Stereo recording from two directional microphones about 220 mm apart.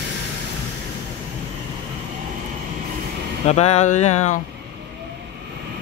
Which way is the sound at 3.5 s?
30° left (ahead or behind).